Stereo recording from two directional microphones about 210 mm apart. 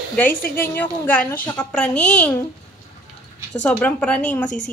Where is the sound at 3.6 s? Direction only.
5° left (ahead or behind).